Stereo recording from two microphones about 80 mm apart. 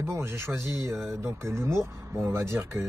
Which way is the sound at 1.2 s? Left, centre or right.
Right.